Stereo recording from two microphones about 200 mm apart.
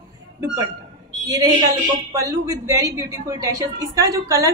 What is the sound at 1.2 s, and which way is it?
A woman's voice, 15° right (ahead or behind).